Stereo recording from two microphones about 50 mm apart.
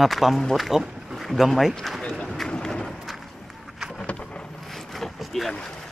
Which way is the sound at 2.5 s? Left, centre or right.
Centre.